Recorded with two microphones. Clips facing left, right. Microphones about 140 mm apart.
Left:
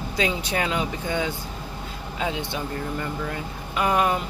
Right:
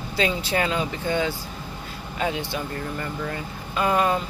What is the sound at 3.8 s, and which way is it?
Speech, 15° left (ahead or behind).